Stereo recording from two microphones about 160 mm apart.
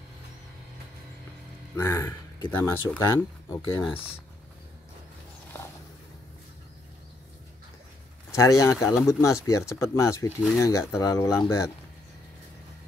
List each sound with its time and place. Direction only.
1.8 s speech: 15° left (ahead or behind)
8.4 s speech: 20° left (ahead or behind)